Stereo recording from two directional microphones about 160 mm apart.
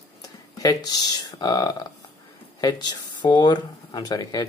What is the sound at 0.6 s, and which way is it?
Speech, 25° left (ahead or behind).